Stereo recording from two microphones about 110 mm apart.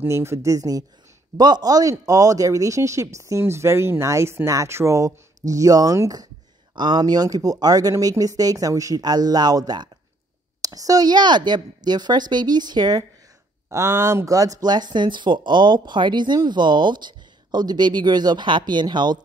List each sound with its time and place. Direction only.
0.0 s speech: 25° right (ahead or behind)
13.7 s speech: 25° right (ahead or behind); by 19.1 s 40° right (ahead or behind)